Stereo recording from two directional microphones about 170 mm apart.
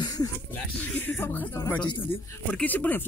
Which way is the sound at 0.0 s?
20° left (ahead or behind).